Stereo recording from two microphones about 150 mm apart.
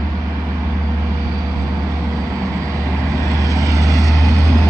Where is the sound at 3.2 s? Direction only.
20° left (ahead or behind).